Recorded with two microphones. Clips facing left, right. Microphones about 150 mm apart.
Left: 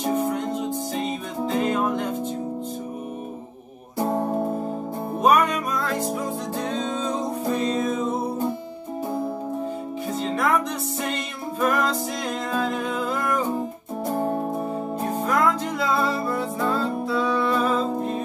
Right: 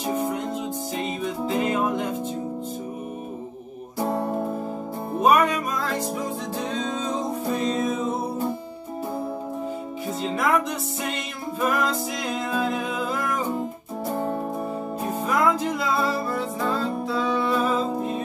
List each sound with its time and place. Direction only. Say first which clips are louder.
0.0 s music: left 2 dB; 5° right (ahead or behind)
4.0 s music: left 2 dB; centre (ahead or behind)
10.2 s music: even; 5° right (ahead or behind)
11.6 s music: left 1 dB; 5° right (ahead or behind)
14.1 s music: left 2 dB; 10° left (ahead or behind)
15.2 s music: right 1 dB; 5° right (ahead or behind)